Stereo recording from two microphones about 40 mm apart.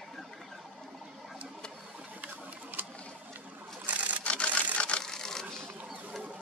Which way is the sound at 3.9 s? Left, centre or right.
Right.